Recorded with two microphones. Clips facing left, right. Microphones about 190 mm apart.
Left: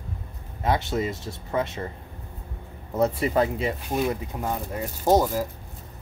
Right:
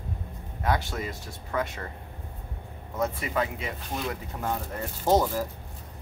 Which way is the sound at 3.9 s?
15° left (ahead or behind).